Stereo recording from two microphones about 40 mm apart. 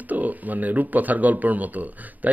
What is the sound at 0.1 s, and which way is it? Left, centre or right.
Speech, right.